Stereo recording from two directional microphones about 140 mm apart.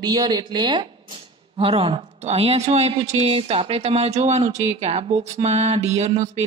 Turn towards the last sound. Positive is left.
turn(degrees=-55)  # may be behind; listen again after turning